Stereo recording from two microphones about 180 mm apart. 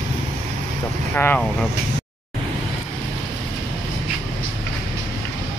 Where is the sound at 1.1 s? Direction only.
10° left (ahead or behind).